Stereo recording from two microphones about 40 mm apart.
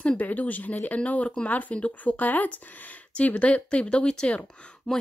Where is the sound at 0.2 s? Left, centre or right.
Left.